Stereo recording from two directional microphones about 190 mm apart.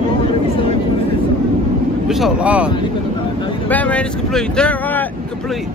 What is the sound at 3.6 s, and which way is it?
Speech, 10° left (ahead or behind).